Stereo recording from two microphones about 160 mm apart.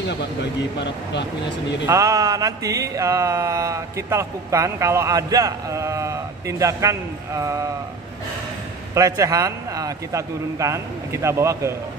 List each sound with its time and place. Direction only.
0.4 s speech: 90° left
1.9 s music: 20° right (ahead or behind)
8.9 s music: 20° right (ahead or behind)